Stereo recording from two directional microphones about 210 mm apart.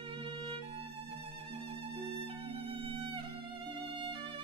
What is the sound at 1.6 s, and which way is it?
Music, 25° right (ahead or behind).